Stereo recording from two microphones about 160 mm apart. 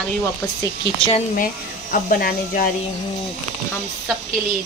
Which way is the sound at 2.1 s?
65° left (ahead or behind).